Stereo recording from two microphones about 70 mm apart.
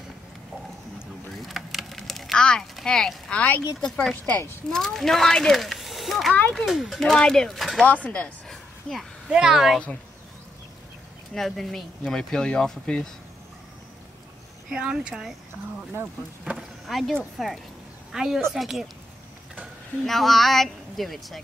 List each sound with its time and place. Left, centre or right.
1.4 s vehicle: centre
2.3 s a sound: centre
2.8 s speech: centre
3.3 s speech: left
4.6 s speech: centre
7.0 s speech: centre
7.8 s speech: left
8.5 s a sound: centre
9.3 s speech: centre
11.3 s speech: centre
14.7 s speech: centre
16.5 s vehicle: right
16.8 s a woman's voice: centre
20.1 s speech: centre